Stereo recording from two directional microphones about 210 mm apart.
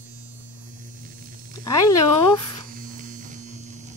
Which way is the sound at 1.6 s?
15° left (ahead or behind).